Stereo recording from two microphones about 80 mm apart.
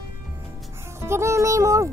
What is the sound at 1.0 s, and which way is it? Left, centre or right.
Speech, right.